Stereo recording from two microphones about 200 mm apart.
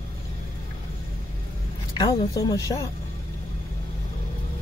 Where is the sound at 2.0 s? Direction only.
20° left (ahead or behind).